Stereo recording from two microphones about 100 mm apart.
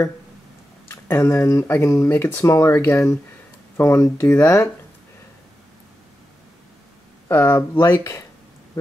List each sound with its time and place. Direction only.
0.8 s speech: 25° left (ahead or behind)
7.2 s speech: 25° left (ahead or behind)